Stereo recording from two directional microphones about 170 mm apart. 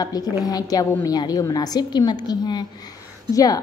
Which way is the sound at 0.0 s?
20° left (ahead or behind).